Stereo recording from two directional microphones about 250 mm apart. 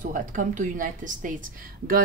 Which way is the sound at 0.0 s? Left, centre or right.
Right.